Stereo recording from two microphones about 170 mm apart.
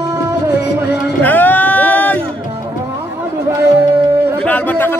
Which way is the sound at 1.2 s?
10° left (ahead or behind).